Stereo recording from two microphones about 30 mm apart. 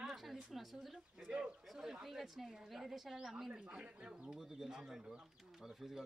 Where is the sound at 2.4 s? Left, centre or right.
Centre.